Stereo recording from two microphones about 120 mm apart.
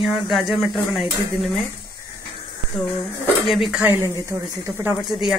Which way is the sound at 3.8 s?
20° right (ahead or behind).